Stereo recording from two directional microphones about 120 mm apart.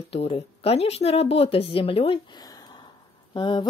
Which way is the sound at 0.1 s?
55° left (ahead or behind).